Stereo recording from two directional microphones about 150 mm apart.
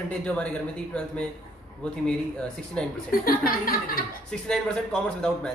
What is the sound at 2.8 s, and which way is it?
Speech, 5° left (ahead or behind).